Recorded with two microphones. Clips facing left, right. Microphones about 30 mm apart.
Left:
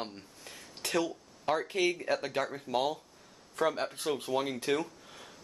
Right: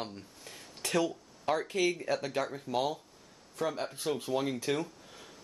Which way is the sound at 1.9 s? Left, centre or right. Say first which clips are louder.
Left 1 dB; centre.